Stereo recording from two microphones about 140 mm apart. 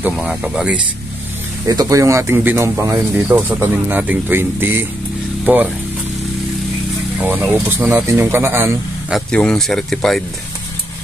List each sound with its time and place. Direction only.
0.0 s speech: 5° right (ahead or behind)
1.7 s speech: 25° right (ahead or behind)
7.2 s speech: 15° right (ahead or behind)
9.1 s speech: 5° left (ahead or behind)